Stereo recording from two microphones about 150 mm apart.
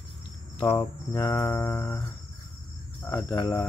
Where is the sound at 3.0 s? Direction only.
15° left (ahead or behind).